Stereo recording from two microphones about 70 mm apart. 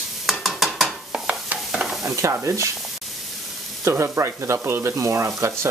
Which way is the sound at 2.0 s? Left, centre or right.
Right.